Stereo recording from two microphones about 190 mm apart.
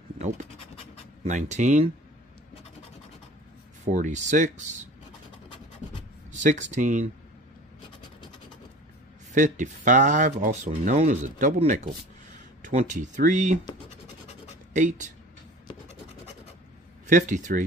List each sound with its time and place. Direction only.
1.2 s speech: 40° right (ahead or behind)
3.8 s speech: 40° right (ahead or behind)
6.3 s speech: 40° right (ahead or behind)
9.3 s speech: 40° right (ahead or behind)
14.7 s speech: 40° right (ahead or behind)
17.1 s speech: 45° right (ahead or behind)